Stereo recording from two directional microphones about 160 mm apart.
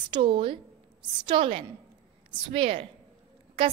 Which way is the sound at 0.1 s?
30° right (ahead or behind).